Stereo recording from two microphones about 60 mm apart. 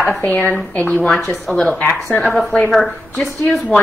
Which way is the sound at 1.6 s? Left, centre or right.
Left.